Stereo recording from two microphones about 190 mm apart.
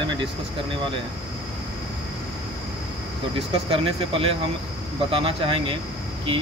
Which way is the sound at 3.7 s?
30° right (ahead or behind).